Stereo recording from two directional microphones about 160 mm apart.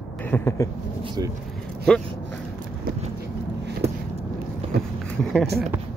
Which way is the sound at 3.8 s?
40° right (ahead or behind).